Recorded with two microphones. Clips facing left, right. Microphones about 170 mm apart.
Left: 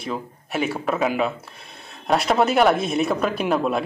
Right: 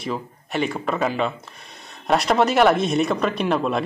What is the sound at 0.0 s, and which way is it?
Speech, centre (ahead or behind).